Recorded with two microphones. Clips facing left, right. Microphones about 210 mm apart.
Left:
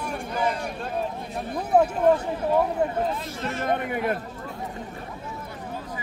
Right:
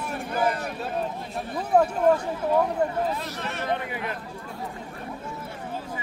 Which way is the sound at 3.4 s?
65° right (ahead or behind).